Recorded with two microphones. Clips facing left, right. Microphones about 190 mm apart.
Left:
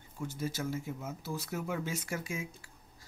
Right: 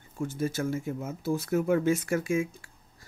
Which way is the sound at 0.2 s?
50° right (ahead or behind).